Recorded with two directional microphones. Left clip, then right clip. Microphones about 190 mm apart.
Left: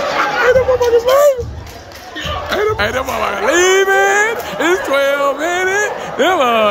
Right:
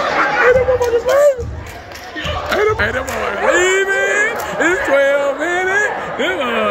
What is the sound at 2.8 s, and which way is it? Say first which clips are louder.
Speech: left 2 dB; 20° left (ahead or behind).